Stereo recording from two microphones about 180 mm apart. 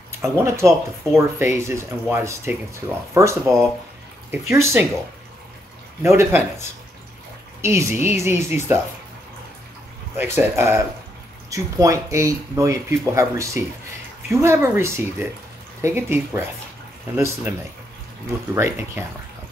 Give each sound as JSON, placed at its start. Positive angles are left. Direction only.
{"t": 0.2, "sound": "speech", "side_deg": -15}
{"t": 6.0, "sound": "speech", "side_deg": -15}
{"t": 7.6, "sound": "speech", "side_deg": -15}
{"t": 10.1, "sound": "speech", "side_deg": -10}